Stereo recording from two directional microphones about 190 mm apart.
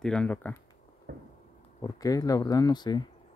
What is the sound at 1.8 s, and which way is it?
Speech, 20° left (ahead or behind).